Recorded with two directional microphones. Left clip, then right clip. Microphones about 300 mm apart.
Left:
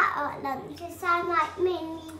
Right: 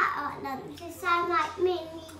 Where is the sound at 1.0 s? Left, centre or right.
Centre.